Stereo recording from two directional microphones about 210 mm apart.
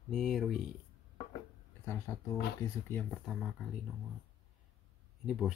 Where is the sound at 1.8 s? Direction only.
10° left (ahead or behind).